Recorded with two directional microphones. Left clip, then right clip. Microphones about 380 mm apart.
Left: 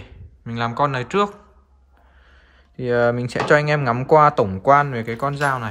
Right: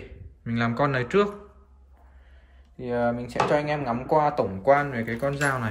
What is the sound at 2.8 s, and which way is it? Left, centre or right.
Speech, centre.